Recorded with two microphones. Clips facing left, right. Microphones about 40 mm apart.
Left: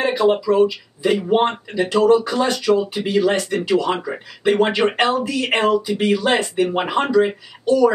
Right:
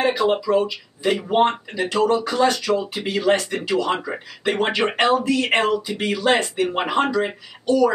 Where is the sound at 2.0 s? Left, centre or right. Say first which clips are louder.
Left 2 dB; centre.